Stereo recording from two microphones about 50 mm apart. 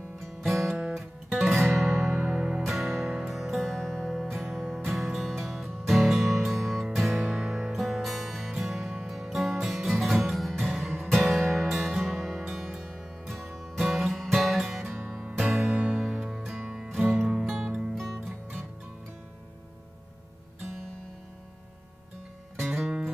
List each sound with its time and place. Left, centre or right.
0.4 s music: centre
2.3 s music: centre
2.6 s music: centre
7.3 s music: centre
15.6 s music: right
16.0 s music: centre
17.4 s music: centre
17.6 s music: centre
17.9 s music: centre
22.8 s music: centre